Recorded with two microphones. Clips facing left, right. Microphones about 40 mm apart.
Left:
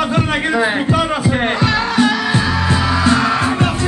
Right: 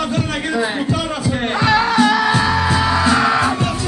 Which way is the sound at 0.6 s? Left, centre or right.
Left.